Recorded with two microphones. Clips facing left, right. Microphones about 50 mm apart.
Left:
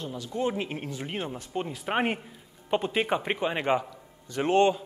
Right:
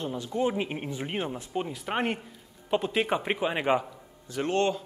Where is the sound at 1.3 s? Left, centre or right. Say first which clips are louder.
Right 1 dB; centre.